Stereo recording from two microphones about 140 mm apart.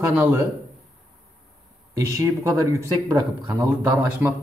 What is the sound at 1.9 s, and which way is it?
A man's voice, 20° right (ahead or behind).